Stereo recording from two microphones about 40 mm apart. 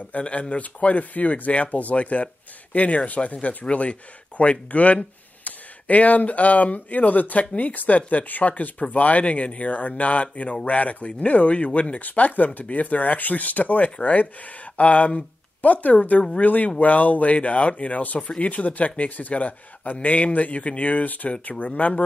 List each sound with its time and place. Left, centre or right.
0.2 s speech: left